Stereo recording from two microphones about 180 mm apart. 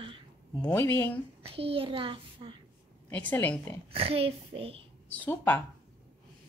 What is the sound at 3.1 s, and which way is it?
Speech, 10° left (ahead or behind).